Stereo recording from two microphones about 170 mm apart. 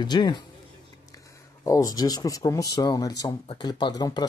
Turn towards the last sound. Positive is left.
turn(degrees=25)  # may be behind; listen again after turning